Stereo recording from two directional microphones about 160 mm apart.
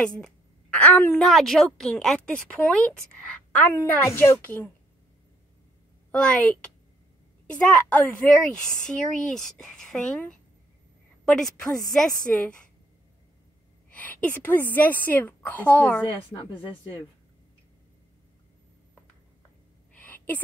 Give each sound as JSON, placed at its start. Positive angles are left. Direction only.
{"t": 0.2, "sound": "a woman's voice", "side_deg": 5}
{"t": 6.1, "sound": "a woman's voice", "side_deg": 5}
{"t": 13.8, "sound": "a woman's voice", "side_deg": 10}
{"t": 16.0, "sound": "a woman's voice", "side_deg": 30}
{"t": 19.9, "sound": "a sound", "side_deg": 10}